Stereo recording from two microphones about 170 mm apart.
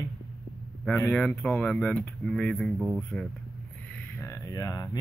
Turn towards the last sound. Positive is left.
turn(degrees=20)  # may be behind; listen again after turning